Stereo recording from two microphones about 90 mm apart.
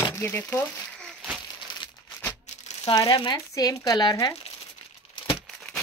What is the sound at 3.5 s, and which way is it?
Speech, 45° left (ahead or behind).